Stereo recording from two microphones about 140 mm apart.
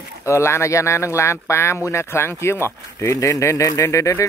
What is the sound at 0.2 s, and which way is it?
Speech, 20° left (ahead or behind).